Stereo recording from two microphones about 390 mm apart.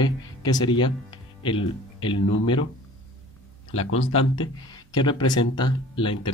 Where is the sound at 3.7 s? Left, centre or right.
Left.